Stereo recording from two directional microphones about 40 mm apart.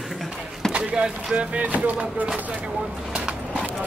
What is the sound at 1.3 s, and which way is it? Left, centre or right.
Speech, right.